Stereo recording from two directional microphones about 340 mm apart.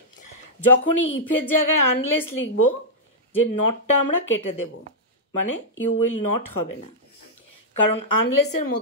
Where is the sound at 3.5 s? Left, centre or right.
Left.